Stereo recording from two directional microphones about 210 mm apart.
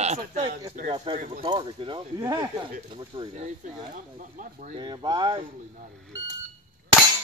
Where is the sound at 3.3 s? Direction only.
35° right (ahead or behind).